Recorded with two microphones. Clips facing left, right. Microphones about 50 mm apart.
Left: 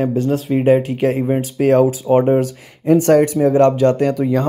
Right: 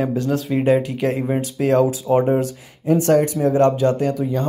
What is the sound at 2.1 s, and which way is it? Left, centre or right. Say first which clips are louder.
Speech: left 4 dB; left.